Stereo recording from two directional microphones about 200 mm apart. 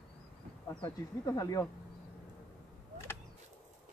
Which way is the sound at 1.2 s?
20° left (ahead or behind).